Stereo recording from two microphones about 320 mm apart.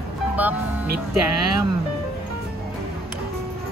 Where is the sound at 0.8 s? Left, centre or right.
Right.